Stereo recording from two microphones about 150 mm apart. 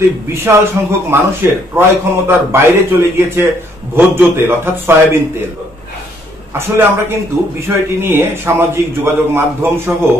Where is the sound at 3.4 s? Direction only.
15° right (ahead or behind).